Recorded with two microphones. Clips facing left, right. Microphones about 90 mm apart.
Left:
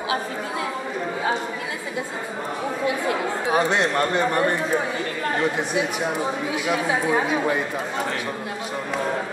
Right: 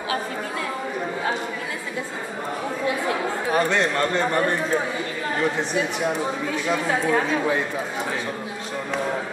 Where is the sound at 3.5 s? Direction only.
15° left (ahead or behind).